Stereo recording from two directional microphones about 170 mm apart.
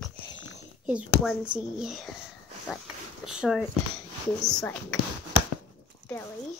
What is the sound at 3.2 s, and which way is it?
Speech, 5° right (ahead or behind).